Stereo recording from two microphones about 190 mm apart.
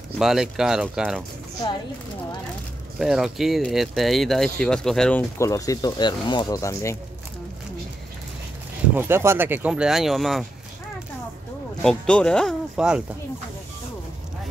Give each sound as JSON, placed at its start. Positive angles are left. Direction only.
{"t": 0.2, "sound": "speech", "side_deg": 0}
{"t": 3.0, "sound": "speech", "side_deg": 0}
{"t": 5.4, "sound": "speech", "side_deg": 15}
{"t": 8.9, "sound": "speech", "side_deg": -10}
{"t": 11.8, "sound": "speech", "side_deg": 5}